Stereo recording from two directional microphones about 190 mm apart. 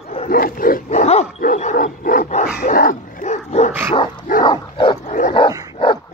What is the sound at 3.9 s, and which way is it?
Dog, 30° left (ahead or behind).